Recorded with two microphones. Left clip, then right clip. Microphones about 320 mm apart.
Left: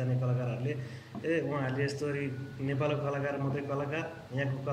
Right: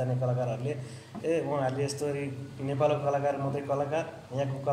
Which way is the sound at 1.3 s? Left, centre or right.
Centre.